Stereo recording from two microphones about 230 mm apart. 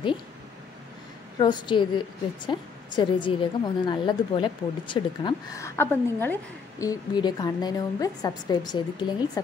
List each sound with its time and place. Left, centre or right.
1.4 s a woman's voice: centre